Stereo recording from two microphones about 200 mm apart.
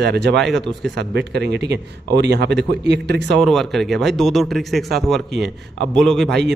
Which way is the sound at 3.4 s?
Centre (ahead or behind).